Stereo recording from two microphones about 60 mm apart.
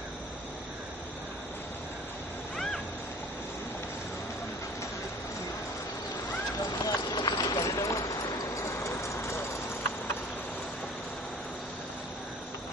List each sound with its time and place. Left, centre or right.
6.8 s clip-clop: left